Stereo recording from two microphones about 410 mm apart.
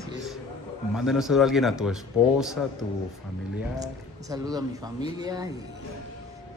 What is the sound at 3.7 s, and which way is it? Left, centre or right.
Speech, centre.